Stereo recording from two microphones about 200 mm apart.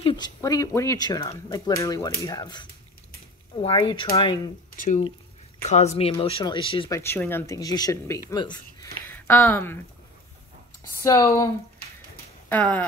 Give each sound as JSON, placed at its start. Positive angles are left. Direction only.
{"t": 0.0, "sound": "speech", "side_deg": 20}
{"t": 4.7, "sound": "speech", "side_deg": 40}
{"t": 7.0, "sound": "speech", "side_deg": 10}
{"t": 9.3, "sound": "speech", "side_deg": 10}
{"t": 11.0, "sound": "speech", "side_deg": 15}